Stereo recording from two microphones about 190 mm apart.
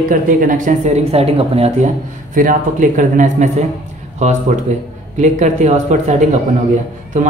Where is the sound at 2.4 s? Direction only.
45° right (ahead or behind).